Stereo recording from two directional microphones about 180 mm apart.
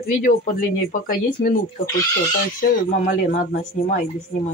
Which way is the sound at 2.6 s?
50° left (ahead or behind).